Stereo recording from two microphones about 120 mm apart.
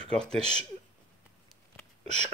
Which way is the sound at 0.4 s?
55° right (ahead or behind).